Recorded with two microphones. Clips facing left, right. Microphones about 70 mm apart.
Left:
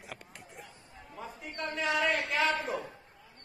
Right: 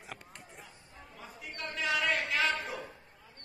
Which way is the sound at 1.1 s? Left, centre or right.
Left.